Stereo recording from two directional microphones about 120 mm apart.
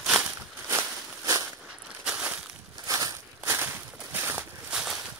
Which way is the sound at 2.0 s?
5° right (ahead or behind).